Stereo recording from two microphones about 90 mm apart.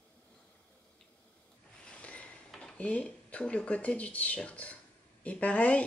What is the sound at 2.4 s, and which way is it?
Speech, 10° left (ahead or behind).